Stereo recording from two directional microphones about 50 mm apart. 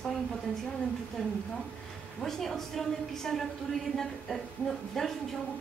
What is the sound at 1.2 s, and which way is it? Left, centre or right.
A woman's voice, centre.